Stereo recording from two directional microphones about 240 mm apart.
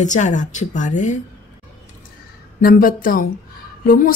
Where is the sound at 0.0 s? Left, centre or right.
Left.